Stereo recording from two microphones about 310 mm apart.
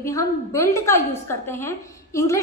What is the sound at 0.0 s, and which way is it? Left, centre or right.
A woman's voice, centre.